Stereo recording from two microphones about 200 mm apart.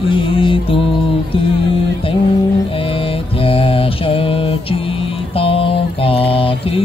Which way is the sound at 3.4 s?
30° left (ahead or behind).